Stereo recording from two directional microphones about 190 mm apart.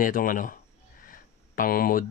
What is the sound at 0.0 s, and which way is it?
Speech, 45° left (ahead or behind).